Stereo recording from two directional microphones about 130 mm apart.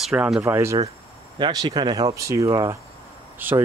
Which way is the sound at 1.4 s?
35° right (ahead or behind).